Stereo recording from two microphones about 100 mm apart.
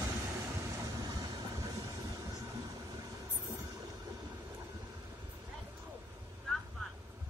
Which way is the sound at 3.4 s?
35° right (ahead or behind).